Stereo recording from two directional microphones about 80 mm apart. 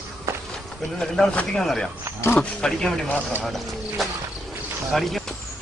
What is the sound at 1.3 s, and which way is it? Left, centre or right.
Speech, centre.